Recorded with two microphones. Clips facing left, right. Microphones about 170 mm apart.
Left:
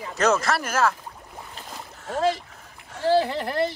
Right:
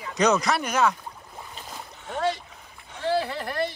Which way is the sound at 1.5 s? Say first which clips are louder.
Even; centre (ahead or behind).